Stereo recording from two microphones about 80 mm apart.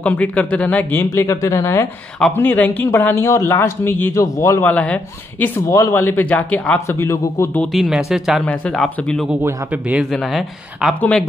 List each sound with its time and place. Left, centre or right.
0.0 s speech: centre
1.1 s speech: left
2.3 s speech: left
4.1 s a man's voice: left
4.6 s speech: left
5.7 s a man's voice: left
5.9 s speech: left
7.0 s speech: left
7.7 s speech: centre
8.4 s speech: centre
9.7 s a man's voice: centre
10.1 s speech: centre